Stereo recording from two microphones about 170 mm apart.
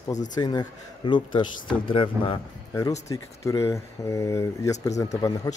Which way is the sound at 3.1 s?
20° left (ahead or behind).